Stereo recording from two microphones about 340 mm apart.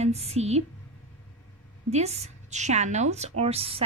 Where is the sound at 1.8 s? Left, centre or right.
Centre.